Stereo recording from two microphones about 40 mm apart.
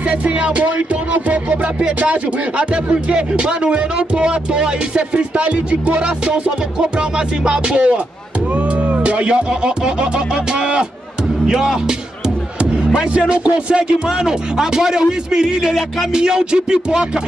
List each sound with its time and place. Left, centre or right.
0.1 s speech: right; by 11.8 s centre
13.3 s speech: right
14.0 s speech: centre